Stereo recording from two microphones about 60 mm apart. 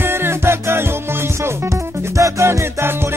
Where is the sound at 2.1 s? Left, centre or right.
Right.